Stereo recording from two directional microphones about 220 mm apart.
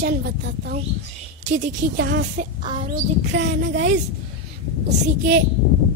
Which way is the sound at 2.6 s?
35° right (ahead or behind).